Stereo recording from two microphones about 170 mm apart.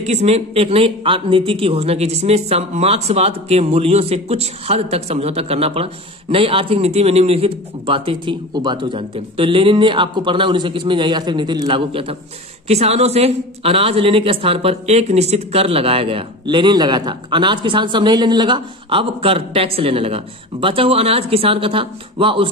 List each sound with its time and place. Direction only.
0.0 s speech: 40° right (ahead or behind)